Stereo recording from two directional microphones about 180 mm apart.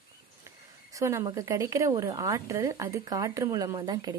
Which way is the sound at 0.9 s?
15° right (ahead or behind).